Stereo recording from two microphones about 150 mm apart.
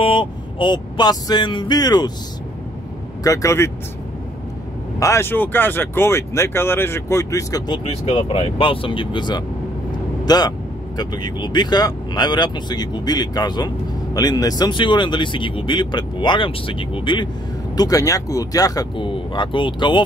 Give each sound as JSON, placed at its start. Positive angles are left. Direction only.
{"t": 0.0, "sound": "speech", "side_deg": 35}
{"t": 3.3, "sound": "speech", "side_deg": 20}
{"t": 5.0, "sound": "speech", "side_deg": 15}